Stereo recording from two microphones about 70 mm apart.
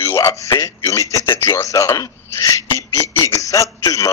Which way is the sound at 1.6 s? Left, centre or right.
Left.